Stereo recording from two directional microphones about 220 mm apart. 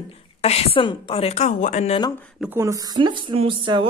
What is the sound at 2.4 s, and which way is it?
Speech, 10° right (ahead or behind).